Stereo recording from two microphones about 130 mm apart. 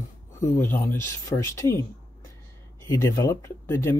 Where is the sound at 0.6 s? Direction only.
15° left (ahead or behind).